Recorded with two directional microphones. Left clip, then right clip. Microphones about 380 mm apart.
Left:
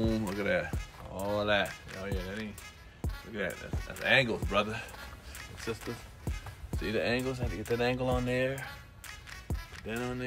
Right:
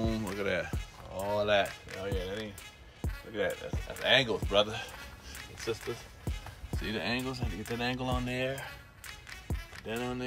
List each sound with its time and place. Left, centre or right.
0.4 s music: centre
1.3 s speech: centre
6.2 s music: centre